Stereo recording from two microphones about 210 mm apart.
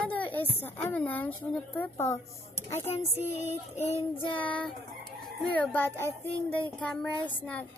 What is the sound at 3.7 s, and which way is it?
Child singing, 30° left (ahead or behind).